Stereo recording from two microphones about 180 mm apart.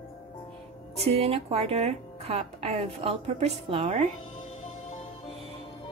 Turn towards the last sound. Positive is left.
turn(degrees=-40)  # may be behind; listen again after turning